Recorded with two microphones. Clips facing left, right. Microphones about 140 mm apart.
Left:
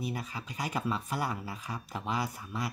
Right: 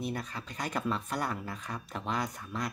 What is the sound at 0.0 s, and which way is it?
Speech, 5° left (ahead or behind).